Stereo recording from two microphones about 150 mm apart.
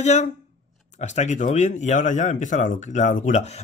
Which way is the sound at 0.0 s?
50° left (ahead or behind).